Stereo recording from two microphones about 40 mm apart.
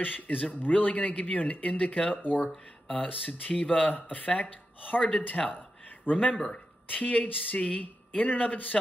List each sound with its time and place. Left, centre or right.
0.0 s speech: left
5.6 s a sound: left
6.9 s speech: left